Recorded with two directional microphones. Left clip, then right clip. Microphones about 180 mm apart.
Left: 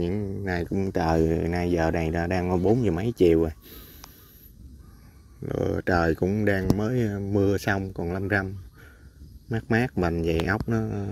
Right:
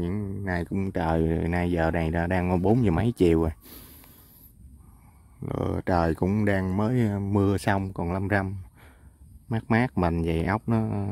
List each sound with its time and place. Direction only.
0.0 s speech: 25° right (ahead or behind)
0.9 s speech: 15° right (ahead or behind); by 4.1 s 35° right (ahead or behind)
5.4 s speech: 25° right (ahead or behind)